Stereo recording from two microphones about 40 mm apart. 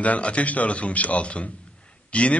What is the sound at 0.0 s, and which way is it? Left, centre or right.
A man's voice, left.